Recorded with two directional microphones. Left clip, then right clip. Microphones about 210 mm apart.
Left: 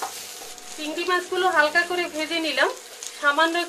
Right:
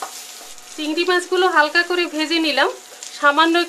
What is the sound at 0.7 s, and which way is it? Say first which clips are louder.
Speech: right 6 dB; 50° right (ahead or behind).